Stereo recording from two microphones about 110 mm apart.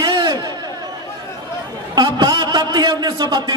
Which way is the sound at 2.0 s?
40° right (ahead or behind).